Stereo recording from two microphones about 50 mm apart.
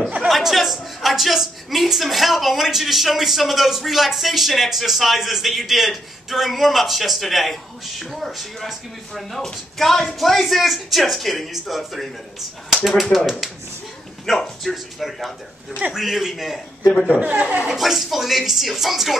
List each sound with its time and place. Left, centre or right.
0.3 s a woman's voice: centre
17.1 s speech: right
17.6 s a woman's voice: centre